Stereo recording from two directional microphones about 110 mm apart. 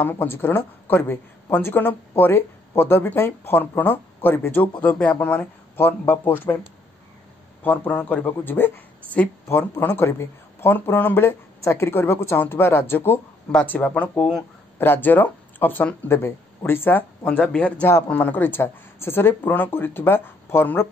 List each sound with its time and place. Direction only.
0.0 s speech: 20° left (ahead or behind)
7.6 s speech: 15° left (ahead or behind)
14.8 s speech: 20° left (ahead or behind)